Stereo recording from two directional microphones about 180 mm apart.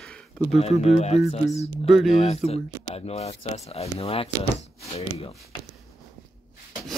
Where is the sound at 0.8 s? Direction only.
35° left (ahead or behind).